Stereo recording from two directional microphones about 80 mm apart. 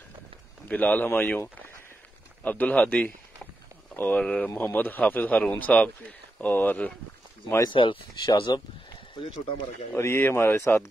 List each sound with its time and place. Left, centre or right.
0.7 s speech: centre
2.4 s speech: centre
4.2 s speech: centre
4.6 s speech: left
7.7 s speech: left
8.1 s speech: left
9.9 s speech: left